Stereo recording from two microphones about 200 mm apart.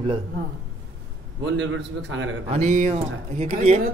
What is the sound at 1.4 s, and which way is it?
Speech, 65° right (ahead or behind).